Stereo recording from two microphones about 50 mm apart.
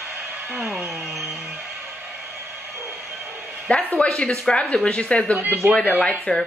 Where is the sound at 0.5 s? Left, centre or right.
Centre.